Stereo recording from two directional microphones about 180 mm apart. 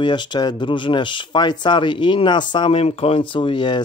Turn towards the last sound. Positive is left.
turn(degrees=25)  # may be behind; listen again after turning